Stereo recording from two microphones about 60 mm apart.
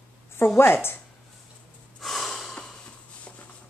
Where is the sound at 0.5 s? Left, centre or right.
Left.